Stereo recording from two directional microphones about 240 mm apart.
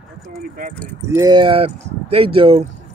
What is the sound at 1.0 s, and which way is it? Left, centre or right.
Speech, centre.